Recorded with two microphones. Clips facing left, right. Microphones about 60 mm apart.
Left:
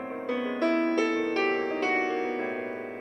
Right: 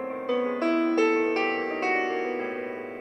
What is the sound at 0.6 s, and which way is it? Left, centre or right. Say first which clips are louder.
Music: even; left.